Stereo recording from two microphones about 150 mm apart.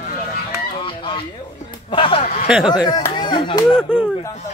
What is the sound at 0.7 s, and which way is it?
Honk, 35° left (ahead or behind).